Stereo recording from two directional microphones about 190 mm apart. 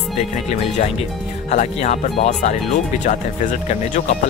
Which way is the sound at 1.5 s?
40° left (ahead or behind).